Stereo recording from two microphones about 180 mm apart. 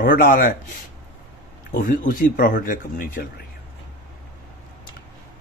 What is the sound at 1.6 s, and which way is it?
Speech, 50° left (ahead or behind).